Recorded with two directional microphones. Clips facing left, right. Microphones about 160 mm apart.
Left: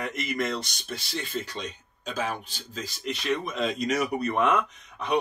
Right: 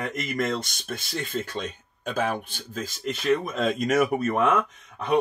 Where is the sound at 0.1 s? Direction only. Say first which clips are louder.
Right 2 dB; 45° right (ahead or behind).